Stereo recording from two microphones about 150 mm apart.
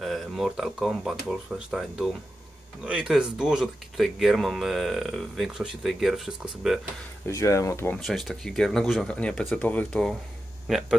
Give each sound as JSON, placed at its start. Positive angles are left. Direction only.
{"t": 0.0, "sound": "speech", "side_deg": 0}
{"t": 7.2, "sound": "speech", "side_deg": 20}
{"t": 8.0, "sound": "speech", "side_deg": 0}